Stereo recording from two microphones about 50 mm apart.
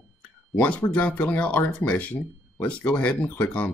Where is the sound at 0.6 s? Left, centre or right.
Left.